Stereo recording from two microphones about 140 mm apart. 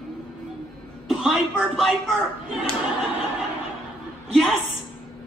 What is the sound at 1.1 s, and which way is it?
Speech, 5° right (ahead or behind).